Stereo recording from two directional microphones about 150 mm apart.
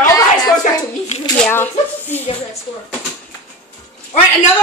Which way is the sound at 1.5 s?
15° left (ahead or behind).